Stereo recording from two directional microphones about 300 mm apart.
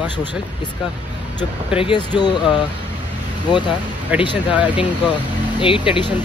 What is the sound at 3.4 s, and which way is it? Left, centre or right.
Speech, centre.